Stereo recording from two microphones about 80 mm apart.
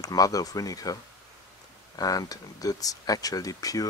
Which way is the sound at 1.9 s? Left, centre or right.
Left.